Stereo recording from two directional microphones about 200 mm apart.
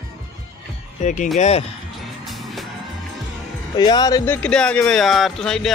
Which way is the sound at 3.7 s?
20° left (ahead or behind).